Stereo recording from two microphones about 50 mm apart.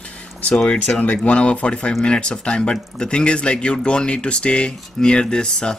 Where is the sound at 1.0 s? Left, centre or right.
Left.